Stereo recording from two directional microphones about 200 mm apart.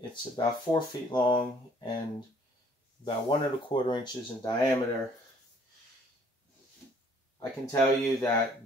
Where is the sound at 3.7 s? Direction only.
25° left (ahead or behind).